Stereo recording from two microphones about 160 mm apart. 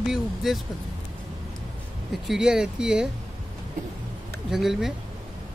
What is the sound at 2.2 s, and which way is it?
Speech, 5° right (ahead or behind).